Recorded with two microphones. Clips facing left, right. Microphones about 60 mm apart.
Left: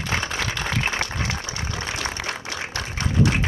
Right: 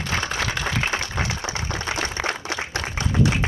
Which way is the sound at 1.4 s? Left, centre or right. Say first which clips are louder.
Right 3 dB; right.